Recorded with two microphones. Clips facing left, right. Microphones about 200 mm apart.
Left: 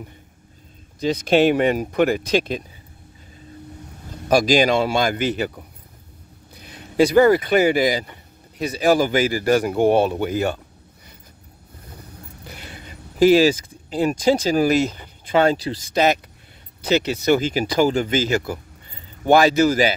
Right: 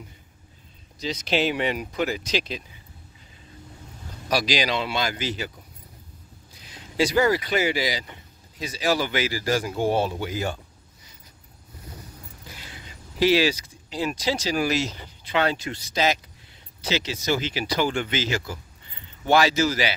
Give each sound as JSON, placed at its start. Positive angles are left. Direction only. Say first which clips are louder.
{"t": 0.9, "sound": "speech", "louder": "left 8 dB", "side_deg": 55}
{"t": 4.3, "sound": "speech", "louder": "left 8 dB", "side_deg": 50}
{"t": 12.4, "sound": "speech", "louder": "left 6 dB", "side_deg": 60}
{"t": 15.9, "sound": "speech", "louder": "left 6 dB", "side_deg": 55}